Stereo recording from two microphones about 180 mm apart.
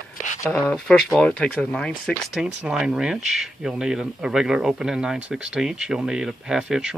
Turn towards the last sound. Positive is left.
turn(degrees=-5)  # may be behind; listen again after turning